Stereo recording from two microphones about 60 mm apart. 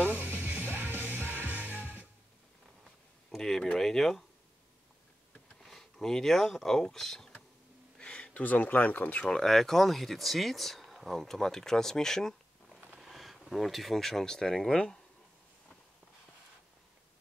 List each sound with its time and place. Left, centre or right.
0.1 s music: right
3.3 s a sound: centre
5.6 s speech: centre
8.0 s speech: centre
9.2 s speech: centre
12.8 s speech: centre